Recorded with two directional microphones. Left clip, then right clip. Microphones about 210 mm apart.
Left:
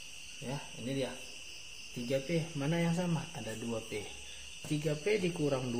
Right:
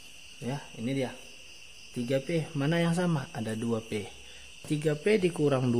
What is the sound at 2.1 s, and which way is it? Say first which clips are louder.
Speech: right 4 dB; 50° right (ahead or behind).